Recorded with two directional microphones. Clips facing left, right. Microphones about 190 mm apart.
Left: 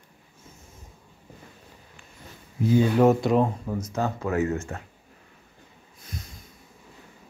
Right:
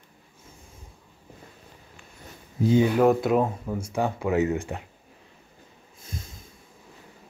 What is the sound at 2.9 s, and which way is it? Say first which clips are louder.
Speech: left 1 dB; centre (ahead or behind).